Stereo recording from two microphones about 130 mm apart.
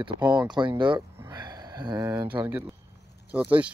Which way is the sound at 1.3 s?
30° right (ahead or behind).